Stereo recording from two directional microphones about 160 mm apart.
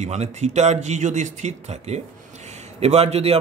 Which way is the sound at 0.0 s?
45° right (ahead or behind).